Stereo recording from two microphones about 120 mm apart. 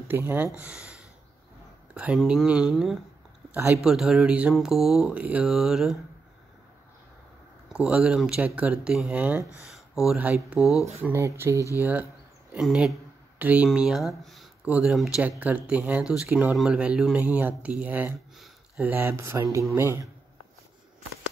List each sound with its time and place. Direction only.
0.1 s speech: 15° right (ahead or behind)
2.1 s speech: 5° right (ahead or behind)
7.9 s speech: 5° right (ahead or behind)
11.0 s speech: 20° right (ahead or behind)
11.8 s speech: 10° right (ahead or behind)